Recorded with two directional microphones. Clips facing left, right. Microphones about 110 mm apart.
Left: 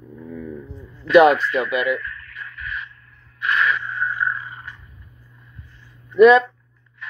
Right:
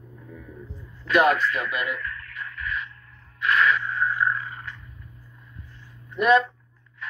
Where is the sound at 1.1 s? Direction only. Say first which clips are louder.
Left 7 dB; 90° left.